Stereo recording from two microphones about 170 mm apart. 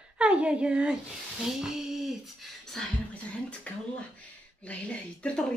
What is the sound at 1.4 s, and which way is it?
Female singing, 5° right (ahead or behind).